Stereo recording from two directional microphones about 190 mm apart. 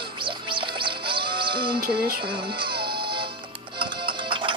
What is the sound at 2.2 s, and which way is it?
Music, 25° right (ahead or behind).